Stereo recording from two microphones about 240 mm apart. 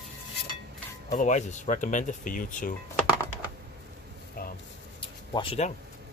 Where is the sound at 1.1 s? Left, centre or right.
Left.